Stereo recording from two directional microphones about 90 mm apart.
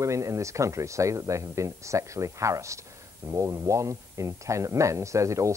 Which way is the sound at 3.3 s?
35° right (ahead or behind).